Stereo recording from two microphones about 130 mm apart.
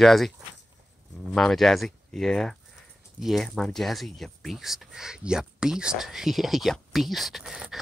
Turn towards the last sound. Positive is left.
turn(degrees=-5)  # may be behind; listen again after turning